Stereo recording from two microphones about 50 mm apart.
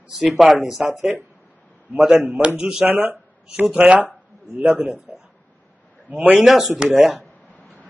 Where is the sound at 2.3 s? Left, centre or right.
Centre.